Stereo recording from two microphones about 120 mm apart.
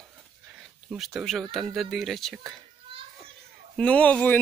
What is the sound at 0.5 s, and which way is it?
Speech, 5° right (ahead or behind).